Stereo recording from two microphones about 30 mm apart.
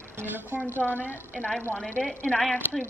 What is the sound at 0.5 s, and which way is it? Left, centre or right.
Speech, right.